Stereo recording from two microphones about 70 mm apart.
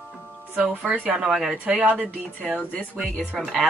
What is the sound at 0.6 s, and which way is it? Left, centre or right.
Speech, centre.